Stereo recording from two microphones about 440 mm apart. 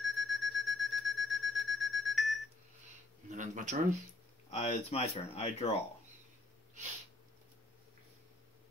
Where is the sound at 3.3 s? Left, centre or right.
Centre.